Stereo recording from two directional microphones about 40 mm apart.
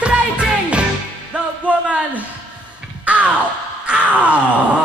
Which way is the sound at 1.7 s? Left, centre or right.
Right.